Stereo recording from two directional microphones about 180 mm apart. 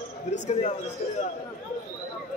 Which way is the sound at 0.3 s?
35° left (ahead or behind).